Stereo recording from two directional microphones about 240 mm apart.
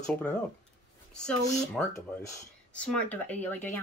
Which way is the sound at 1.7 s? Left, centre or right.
Centre.